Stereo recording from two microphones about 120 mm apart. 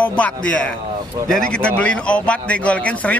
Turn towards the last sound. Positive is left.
turn(degrees=10)  # may be behind; listen again after turning